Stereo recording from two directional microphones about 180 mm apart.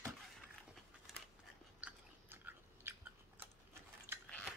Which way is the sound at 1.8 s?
10° right (ahead or behind).